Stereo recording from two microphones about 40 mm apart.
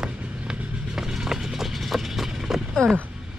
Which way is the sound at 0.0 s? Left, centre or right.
Centre.